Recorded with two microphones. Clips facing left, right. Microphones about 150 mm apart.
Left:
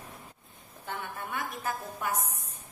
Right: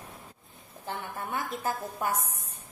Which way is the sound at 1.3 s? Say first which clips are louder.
Right 3 dB; 30° right (ahead or behind).